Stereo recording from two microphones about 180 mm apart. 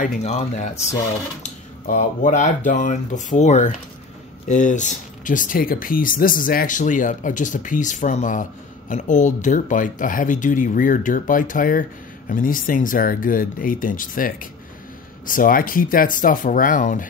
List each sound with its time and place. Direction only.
0.0 s speech: 40° left (ahead or behind)